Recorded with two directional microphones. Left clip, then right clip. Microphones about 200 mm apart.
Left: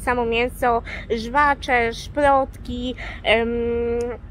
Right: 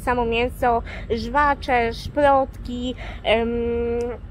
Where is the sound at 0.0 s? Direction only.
10° left (ahead or behind).